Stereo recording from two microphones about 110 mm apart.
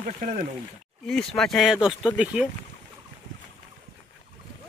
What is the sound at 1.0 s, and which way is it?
A man's voice, 5° left (ahead or behind).